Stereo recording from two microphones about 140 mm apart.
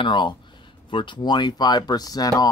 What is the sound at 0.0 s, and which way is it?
Speech, 35° left (ahead or behind).